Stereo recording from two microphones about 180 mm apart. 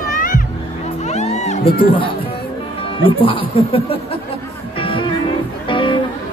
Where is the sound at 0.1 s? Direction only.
50° left (ahead or behind).